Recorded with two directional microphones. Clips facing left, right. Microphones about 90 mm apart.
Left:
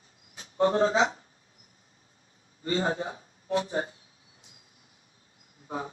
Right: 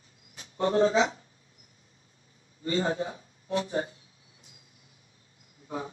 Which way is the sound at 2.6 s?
35° left (ahead or behind).